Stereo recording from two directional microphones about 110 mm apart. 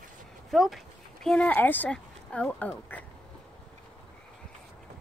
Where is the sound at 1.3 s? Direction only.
15° left (ahead or behind).